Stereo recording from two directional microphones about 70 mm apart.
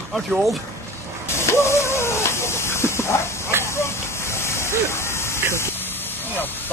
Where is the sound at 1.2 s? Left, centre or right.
Left.